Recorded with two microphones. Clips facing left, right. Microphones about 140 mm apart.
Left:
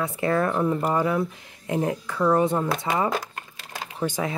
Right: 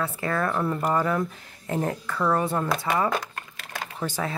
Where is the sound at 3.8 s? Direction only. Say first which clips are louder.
Left 3 dB; 15° left (ahead or behind).